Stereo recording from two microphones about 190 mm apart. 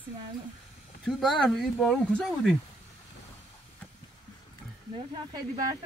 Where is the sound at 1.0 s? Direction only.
Centre (ahead or behind).